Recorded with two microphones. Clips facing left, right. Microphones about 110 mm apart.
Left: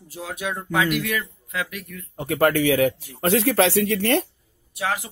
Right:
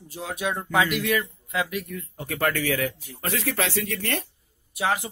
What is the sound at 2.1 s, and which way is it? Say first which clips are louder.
Speech: left 7 dB; 55° left (ahead or behind).